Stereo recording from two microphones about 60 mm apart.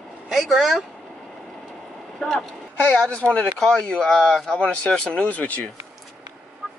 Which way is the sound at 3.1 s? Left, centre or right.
Centre.